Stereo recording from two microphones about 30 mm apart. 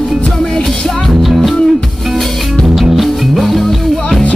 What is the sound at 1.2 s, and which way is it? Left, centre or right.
Music, centre.